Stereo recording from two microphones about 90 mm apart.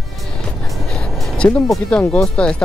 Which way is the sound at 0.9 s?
10° left (ahead or behind).